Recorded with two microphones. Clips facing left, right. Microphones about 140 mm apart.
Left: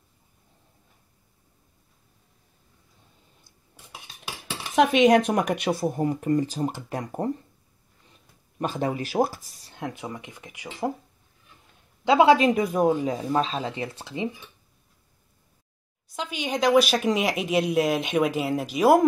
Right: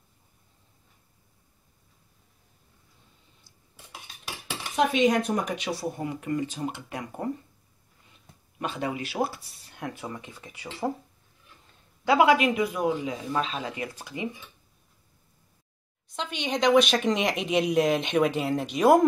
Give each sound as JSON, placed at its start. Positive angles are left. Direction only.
{"t": 4.7, "sound": "speech", "side_deg": 85}
{"t": 8.5, "sound": "a man's voice", "side_deg": 40}
{"t": 9.8, "sound": "speech", "side_deg": 20}
{"t": 12.0, "sound": "a man's voice", "side_deg": 25}
{"t": 16.2, "sound": "speech", "side_deg": 5}